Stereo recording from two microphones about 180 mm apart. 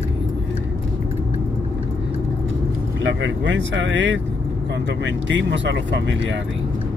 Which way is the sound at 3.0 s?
90° right.